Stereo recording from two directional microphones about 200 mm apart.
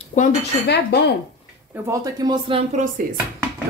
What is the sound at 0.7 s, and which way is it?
Speech, 55° left (ahead or behind).